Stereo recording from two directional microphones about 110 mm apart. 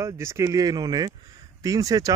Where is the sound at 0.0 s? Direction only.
25° right (ahead or behind).